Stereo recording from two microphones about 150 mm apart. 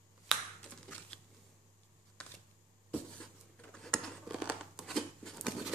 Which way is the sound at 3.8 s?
5° left (ahead or behind).